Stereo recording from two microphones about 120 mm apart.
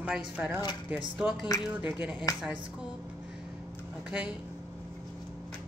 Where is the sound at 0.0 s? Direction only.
10° right (ahead or behind).